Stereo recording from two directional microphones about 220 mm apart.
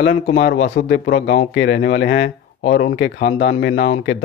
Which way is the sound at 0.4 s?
50° left (ahead or behind).